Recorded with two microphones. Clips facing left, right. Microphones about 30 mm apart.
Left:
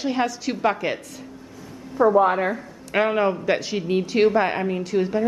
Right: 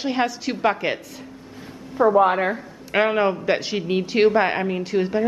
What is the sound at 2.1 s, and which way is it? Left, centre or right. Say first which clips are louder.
A man's voice: right 1 dB; centre.